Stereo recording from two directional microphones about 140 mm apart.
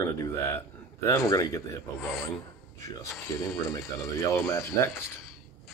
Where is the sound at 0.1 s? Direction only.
20° left (ahead or behind).